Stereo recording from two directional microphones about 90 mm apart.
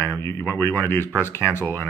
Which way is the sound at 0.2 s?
30° left (ahead or behind).